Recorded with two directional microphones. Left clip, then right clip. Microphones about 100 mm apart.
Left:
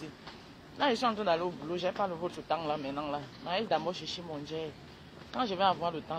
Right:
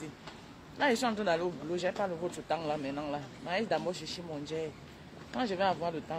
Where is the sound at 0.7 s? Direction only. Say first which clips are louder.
Even; 20° right (ahead or behind).